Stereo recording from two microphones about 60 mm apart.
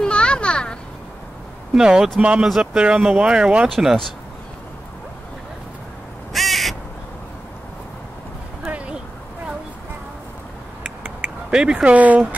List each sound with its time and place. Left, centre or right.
0.0 s children playing: centre
1.7 s speech: centre
3.6 s speech: centre
6.3 s crow: centre
8.6 s a sound: right
11.1 s a sound: right
11.5 s speech: centre